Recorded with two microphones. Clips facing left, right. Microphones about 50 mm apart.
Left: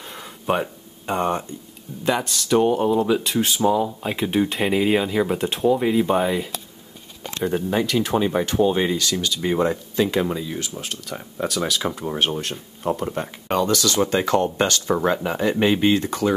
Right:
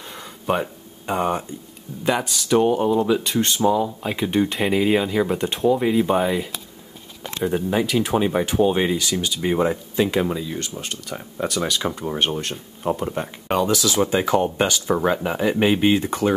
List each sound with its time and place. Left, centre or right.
0.0 s a sound: centre
2.0 s speech: centre
10.2 s speech: centre
16.1 s speech: right